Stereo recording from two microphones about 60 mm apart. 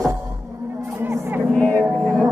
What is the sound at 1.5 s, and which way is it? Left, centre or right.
Music, left.